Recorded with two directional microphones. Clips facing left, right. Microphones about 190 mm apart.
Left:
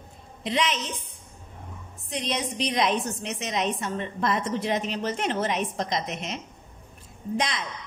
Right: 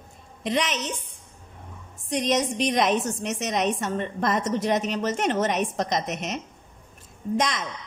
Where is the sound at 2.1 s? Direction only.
45° right (ahead or behind).